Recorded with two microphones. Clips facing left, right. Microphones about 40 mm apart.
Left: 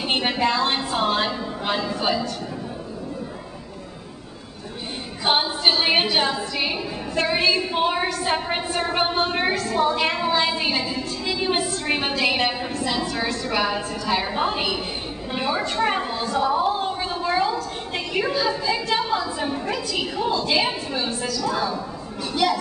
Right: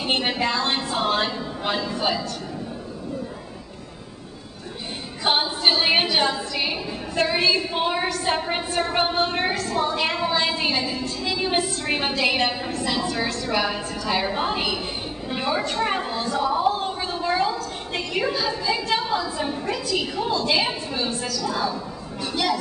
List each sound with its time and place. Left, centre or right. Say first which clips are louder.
0.0 s a woman's voice: left 1 dB; centre
5.2 s a woman's voice: left 1 dB; centre